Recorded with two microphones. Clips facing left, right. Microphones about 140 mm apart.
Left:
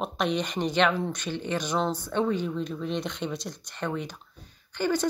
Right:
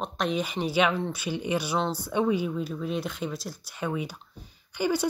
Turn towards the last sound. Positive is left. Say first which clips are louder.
# even
turn(degrees=-10)  # may be behind; listen again after turning